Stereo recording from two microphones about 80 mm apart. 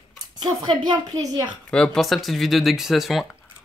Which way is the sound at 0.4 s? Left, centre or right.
Right.